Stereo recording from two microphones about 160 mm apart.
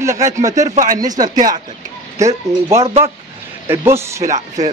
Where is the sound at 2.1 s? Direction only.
20° right (ahead or behind).